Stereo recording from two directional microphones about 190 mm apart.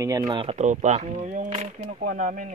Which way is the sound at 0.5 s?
40° right (ahead or behind).